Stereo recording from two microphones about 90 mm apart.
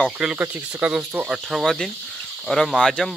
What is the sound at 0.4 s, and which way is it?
Speech, 20° right (ahead or behind).